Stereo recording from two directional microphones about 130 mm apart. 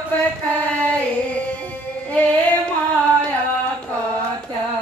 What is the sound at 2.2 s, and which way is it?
Female singing, 10° left (ahead or behind).